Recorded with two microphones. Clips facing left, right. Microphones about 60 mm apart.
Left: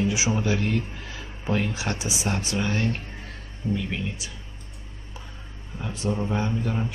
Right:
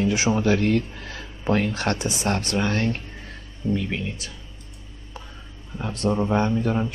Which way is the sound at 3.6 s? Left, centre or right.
Centre.